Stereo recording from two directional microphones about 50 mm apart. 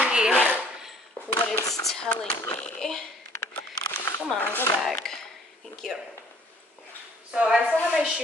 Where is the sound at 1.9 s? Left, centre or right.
Centre.